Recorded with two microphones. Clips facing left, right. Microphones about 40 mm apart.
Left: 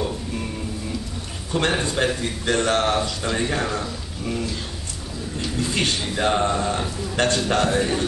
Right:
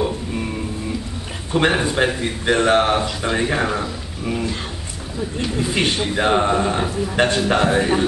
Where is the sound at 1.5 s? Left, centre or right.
Centre.